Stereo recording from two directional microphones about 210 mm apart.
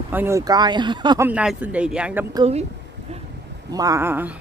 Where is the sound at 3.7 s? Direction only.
15° right (ahead or behind).